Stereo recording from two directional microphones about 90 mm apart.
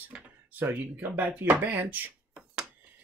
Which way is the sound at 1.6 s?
20° right (ahead or behind).